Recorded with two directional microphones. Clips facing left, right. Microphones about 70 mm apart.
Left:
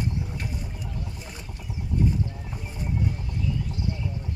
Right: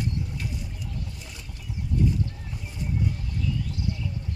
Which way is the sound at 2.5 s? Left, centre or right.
Left.